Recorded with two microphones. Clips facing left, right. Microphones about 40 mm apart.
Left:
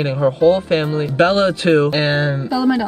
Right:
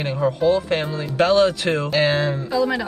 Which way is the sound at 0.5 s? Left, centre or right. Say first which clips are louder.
Left 5 dB; left.